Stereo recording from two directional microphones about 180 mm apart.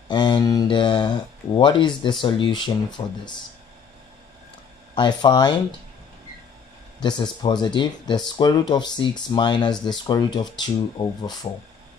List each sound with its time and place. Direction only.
0.1 s mantra: 25° left (ahead or behind)
1.6 s speech: 25° left (ahead or behind)
4.9 s speech: 25° left (ahead or behind)
7.0 s speech: 25° left (ahead or behind)